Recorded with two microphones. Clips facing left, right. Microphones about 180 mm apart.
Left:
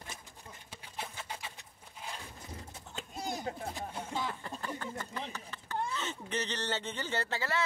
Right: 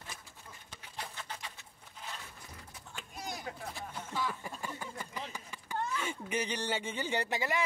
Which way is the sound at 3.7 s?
20° left (ahead or behind).